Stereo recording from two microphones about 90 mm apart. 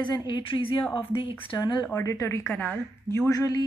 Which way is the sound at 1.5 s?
55° left (ahead or behind).